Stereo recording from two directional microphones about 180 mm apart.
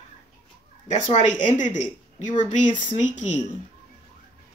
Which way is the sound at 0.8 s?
40° left (ahead or behind).